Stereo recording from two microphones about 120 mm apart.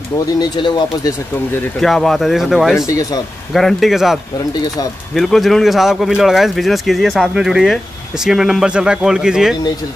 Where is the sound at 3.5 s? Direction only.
Centre (ahead or behind).